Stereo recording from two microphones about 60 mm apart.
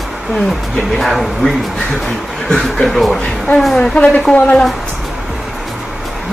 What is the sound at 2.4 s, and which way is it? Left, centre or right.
A woman's voice, centre.